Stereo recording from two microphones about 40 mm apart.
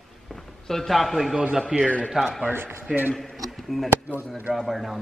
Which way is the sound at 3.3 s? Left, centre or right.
Centre.